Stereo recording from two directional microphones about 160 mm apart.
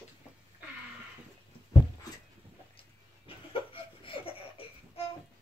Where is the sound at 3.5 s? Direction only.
35° left (ahead or behind).